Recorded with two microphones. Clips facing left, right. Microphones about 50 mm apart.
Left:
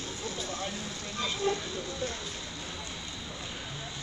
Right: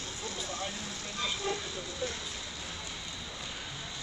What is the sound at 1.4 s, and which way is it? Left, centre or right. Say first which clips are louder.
Vehicle: left 6 dB; left.